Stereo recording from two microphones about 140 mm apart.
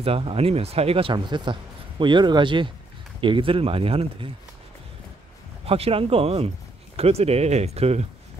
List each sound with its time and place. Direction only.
0.0 s speech: 40° right (ahead or behind)
5.7 s speech: 45° right (ahead or behind)